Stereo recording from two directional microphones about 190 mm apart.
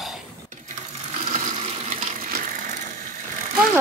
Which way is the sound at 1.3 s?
35° right (ahead or behind).